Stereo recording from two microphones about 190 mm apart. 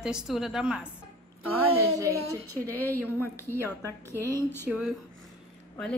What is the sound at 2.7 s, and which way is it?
Speech, 10° left (ahead or behind).